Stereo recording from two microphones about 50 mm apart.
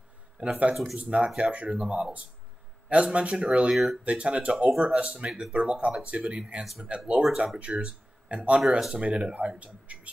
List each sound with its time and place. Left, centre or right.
0.4 s speech: right
3.7 s speech: centre
4.0 s speech: right
4.6 s speech: centre
4.9 s speech: right
8.7 s speech: centre
9.0 s speech: right